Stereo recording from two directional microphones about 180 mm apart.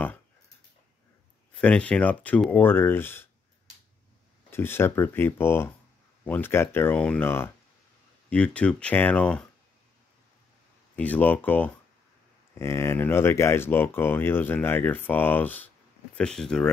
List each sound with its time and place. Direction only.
1.6 s speech: 5° left (ahead or behind)
4.5 s speech: 15° left (ahead or behind)
11.0 s speech: 10° left (ahead or behind)